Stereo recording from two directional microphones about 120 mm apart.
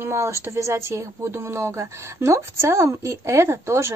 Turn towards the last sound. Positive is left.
turn(degrees=-25)  # may be behind; listen again after turning